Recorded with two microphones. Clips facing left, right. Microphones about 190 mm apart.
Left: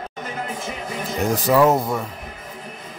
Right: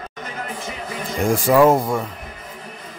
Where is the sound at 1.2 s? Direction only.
10° right (ahead or behind).